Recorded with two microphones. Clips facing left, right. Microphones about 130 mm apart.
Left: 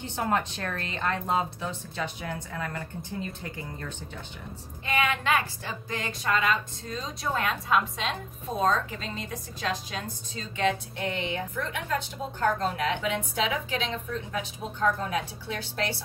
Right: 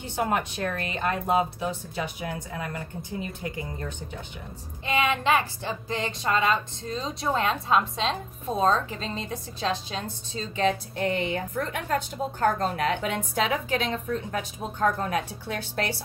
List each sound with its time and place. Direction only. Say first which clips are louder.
0.1 s speech: right 2 dB; 15° right (ahead or behind)
4.8 s a woman's voice: right 3 dB; 20° right (ahead or behind); by 15.9 s 50° right (ahead or behind)